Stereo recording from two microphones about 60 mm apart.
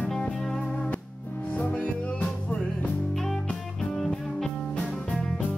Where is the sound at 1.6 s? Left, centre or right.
Left.